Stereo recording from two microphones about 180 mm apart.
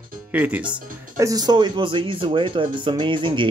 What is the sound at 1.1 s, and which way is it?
Speech, 20° right (ahead or behind).